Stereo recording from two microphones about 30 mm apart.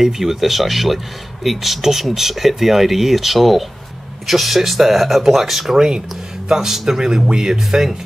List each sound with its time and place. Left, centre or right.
0.0 s speech: centre
5.8 s speech: right